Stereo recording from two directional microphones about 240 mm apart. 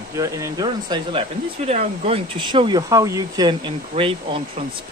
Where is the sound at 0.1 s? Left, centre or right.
Centre.